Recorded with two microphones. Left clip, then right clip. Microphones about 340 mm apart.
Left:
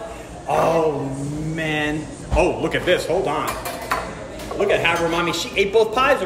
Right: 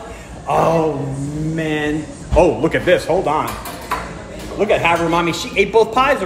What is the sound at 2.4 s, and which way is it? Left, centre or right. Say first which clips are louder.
A man's voice: right 6 dB; centre.